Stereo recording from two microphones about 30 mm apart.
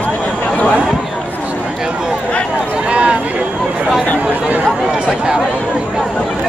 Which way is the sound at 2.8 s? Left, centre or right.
Right.